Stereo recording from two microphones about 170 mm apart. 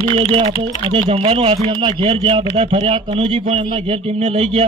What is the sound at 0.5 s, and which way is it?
Speech, 30° left (ahead or behind).